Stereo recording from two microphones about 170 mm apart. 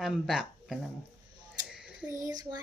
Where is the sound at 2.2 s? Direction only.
20° right (ahead or behind).